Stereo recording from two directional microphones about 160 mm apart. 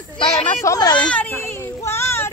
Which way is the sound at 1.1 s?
10° left (ahead or behind).